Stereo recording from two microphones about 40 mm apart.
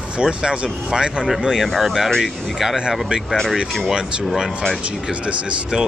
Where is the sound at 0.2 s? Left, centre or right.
Right.